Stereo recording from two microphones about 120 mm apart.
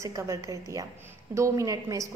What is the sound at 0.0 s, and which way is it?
A woman's voice, 25° right (ahead or behind).